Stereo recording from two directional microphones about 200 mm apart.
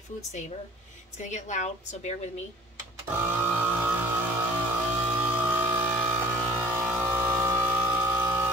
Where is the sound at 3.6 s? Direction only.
10° right (ahead or behind).